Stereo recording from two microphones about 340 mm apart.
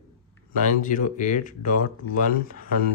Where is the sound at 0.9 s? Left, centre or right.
Left.